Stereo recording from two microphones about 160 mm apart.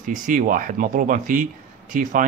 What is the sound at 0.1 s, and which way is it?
A man's voice, 55° right (ahead or behind).